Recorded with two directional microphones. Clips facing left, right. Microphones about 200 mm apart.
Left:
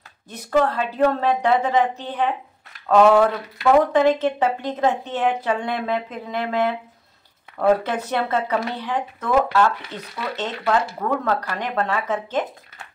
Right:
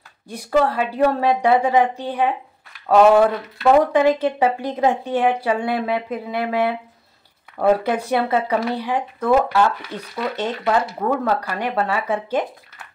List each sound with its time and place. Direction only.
0.3 s speech: 10° right (ahead or behind)